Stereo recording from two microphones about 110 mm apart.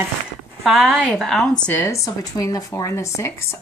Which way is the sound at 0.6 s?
5° right (ahead or behind).